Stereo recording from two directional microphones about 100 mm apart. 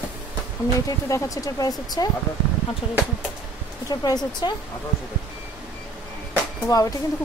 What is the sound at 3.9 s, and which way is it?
Speech, 40° left (ahead or behind).